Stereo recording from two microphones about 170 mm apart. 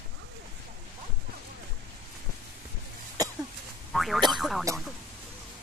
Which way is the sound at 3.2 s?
20° right (ahead or behind).